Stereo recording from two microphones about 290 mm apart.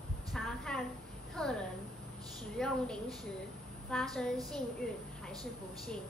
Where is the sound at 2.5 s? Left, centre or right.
Centre.